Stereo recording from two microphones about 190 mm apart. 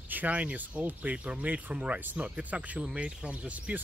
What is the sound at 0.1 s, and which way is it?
Speech, 10° right (ahead or behind).